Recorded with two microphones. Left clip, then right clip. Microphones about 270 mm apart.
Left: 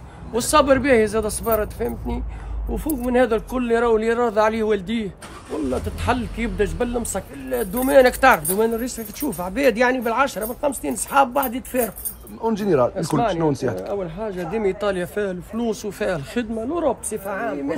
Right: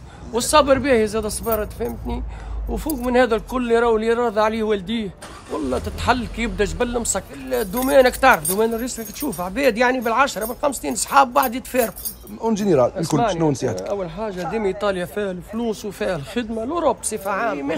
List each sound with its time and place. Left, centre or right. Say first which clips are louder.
0.3 s speech: right 1 dB; centre
12.4 s speech: right 1 dB; right
13.7 s speech: right 1 dB; centre